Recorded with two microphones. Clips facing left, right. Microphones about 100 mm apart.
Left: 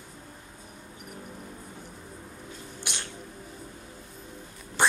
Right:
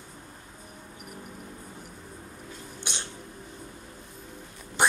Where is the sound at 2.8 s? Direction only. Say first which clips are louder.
Even; 25° right (ahead or behind).